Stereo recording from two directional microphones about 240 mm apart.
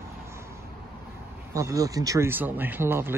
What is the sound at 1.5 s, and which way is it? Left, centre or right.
Speech, centre.